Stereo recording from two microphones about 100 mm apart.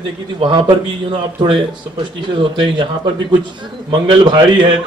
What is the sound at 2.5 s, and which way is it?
Speech, 55° right (ahead or behind).